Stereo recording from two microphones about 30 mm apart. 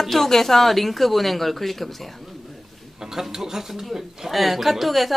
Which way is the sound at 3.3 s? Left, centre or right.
Centre.